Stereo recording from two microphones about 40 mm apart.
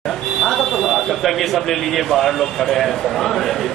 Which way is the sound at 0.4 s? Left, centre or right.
Centre.